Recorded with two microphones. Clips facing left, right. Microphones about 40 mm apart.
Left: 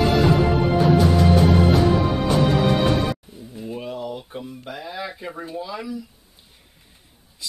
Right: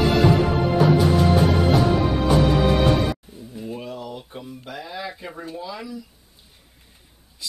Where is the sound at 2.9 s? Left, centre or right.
Centre.